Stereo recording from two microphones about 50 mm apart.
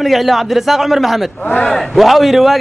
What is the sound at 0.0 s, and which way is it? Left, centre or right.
A man's voice, centre.